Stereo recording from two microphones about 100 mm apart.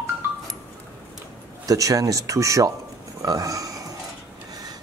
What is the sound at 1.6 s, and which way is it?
Speech, 35° right (ahead or behind).